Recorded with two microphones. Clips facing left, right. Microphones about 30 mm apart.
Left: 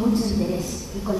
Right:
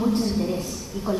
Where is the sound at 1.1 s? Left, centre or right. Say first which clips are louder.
Left 1 dB; centre.